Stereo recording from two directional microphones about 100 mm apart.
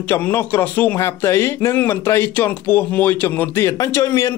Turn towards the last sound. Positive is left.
turn(degrees=30)  # may be behind; listen again after turning